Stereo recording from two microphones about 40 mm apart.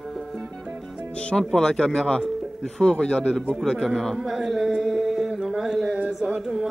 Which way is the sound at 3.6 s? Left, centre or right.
Centre.